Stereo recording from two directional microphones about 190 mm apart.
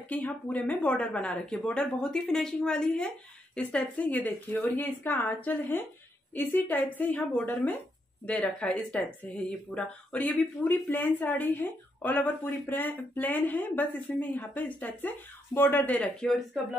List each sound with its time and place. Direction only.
0.1 s speech: 10° left (ahead or behind)